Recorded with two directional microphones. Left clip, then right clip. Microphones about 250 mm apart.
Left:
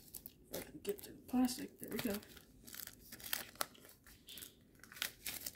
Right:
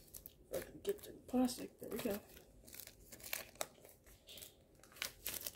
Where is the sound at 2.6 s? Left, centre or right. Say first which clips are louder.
Left 6 dB; centre.